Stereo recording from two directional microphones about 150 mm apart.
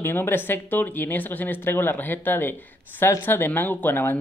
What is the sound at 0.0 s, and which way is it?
Speech, 15° left (ahead or behind).